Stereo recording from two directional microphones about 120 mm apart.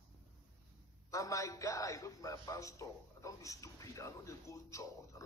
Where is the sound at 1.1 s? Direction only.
25° left (ahead or behind).